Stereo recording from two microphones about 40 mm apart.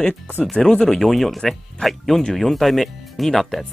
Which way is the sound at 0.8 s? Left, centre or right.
Centre.